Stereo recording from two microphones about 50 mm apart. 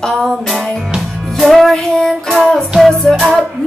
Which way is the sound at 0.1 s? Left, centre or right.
Centre.